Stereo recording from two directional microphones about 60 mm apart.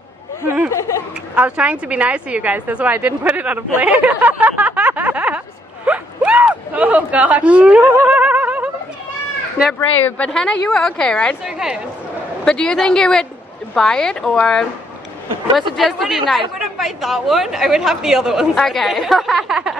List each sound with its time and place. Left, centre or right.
1.3 s speech: right
8.1 s a sound: right
9.8 s speech: left
10.2 s a woman's voice: centre
11.4 s a woman's voice: centre
12.4 s a woman's voice: centre
15.5 s speech: centre
18.6 s speech: centre